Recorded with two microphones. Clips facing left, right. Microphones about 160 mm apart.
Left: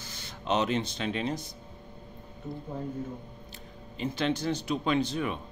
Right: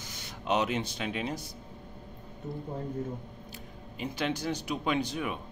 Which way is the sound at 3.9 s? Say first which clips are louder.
Left 3 dB; 10° right (ahead or behind).